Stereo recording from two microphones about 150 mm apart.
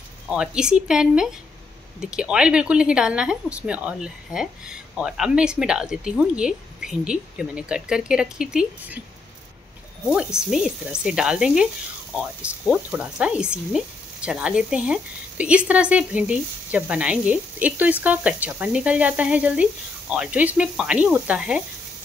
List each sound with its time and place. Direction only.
0.3 s speech: 5° right (ahead or behind)
10.0 s speech: 5° right (ahead or behind)